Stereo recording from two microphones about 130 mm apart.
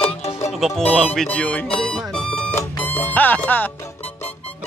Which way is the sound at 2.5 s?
15° left (ahead or behind).